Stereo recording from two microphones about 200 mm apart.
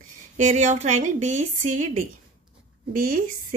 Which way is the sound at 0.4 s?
35° right (ahead or behind).